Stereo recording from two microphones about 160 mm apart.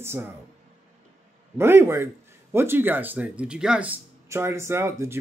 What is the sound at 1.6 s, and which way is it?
Speech, 15° right (ahead or behind).